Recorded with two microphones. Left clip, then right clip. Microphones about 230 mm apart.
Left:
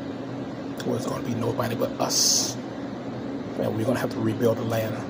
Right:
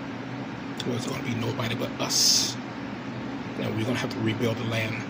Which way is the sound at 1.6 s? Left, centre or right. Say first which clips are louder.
Left 4 dB; centre.